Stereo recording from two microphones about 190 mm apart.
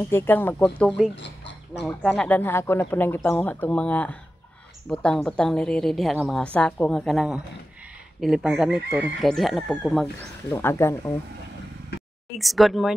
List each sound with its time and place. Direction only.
0.1 s speech: 10° left (ahead or behind)
1.1 s speech: 65° left (ahead or behind)
2.0 s a woman's voice: 5° left (ahead or behind)
10.5 s speech: 15° left (ahead or behind)
12.4 s a woman's voice: centre (ahead or behind)